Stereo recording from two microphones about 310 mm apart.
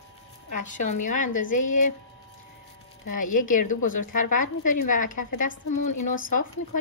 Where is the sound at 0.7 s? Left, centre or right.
Left.